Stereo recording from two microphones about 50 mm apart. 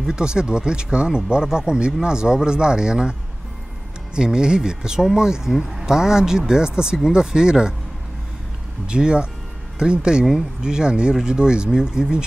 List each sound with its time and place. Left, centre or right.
0.0 s speech: centre
8.8 s speech: centre